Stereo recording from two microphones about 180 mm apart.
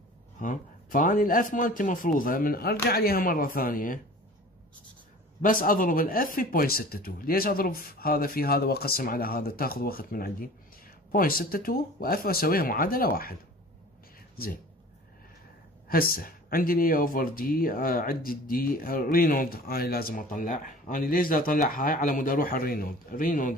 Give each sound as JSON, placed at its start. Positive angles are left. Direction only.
{"t": 0.4, "sound": "speech", "side_deg": 45}
{"t": 5.4, "sound": "speech", "side_deg": 50}
{"t": 15.9, "sound": "speech", "side_deg": 55}